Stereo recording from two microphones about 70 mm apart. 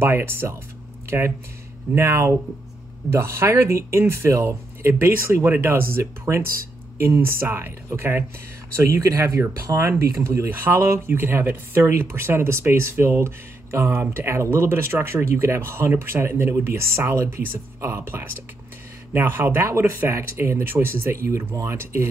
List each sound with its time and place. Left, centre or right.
0.0 s speech: right
8.7 s speech: right
10.5 s speech: right